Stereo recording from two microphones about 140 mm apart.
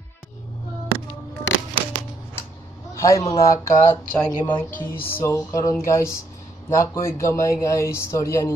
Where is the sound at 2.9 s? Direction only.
20° left (ahead or behind).